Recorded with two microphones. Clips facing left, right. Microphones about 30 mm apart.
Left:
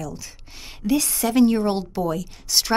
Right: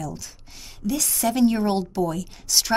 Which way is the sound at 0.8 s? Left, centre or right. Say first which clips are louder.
Left 5 dB; left.